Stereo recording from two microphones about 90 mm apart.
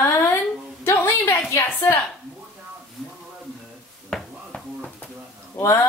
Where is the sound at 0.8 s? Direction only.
25° left (ahead or behind).